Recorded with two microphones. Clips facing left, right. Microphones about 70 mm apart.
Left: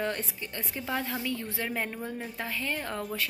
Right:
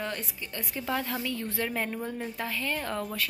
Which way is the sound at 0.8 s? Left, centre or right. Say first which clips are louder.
Right 1 dB; centre.